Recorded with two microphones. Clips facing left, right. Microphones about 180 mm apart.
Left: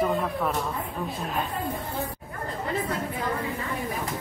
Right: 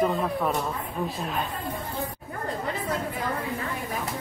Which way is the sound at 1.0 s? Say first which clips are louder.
Right 5 dB; 15° right (ahead or behind).